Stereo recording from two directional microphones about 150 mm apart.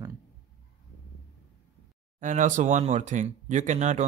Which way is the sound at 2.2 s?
60° right (ahead or behind).